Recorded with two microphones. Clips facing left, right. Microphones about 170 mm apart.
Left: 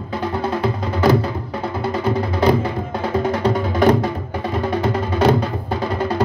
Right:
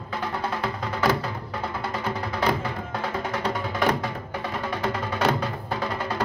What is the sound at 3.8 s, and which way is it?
Music, 40° left (ahead or behind).